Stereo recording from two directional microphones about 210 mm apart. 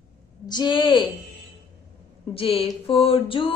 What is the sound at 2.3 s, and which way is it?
A woman's voice, 25° left (ahead or behind).